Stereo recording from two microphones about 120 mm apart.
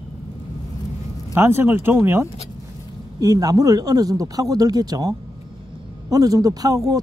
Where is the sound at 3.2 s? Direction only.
30° right (ahead or behind).